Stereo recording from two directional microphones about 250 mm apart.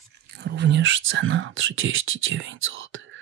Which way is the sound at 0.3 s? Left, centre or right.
Right.